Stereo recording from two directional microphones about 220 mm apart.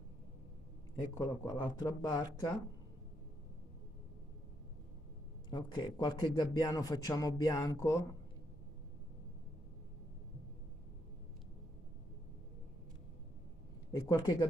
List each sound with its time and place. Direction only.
1.1 s a man's voice: 15° left (ahead or behind)
5.5 s a man's voice: 20° left (ahead or behind)
13.9 s speech: 15° left (ahead or behind)